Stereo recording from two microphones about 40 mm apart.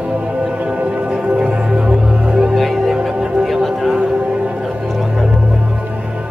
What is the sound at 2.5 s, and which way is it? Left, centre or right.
Music, centre.